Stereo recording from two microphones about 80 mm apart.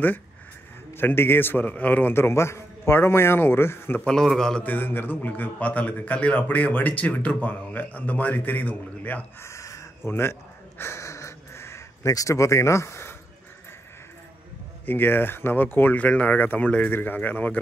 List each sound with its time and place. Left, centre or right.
0.9 s a man's voice: left
4.0 s a man's voice: centre
4.6 s a man's voice: left
9.4 s crow: left
10.8 s a sound: left
12.1 s speech: left
14.9 s a man's voice: left